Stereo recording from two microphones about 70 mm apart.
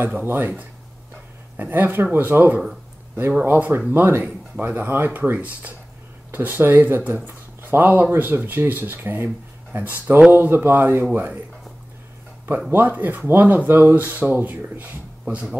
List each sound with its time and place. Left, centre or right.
0.0 s speech: right
1.6 s speech: right
12.7 s speech: right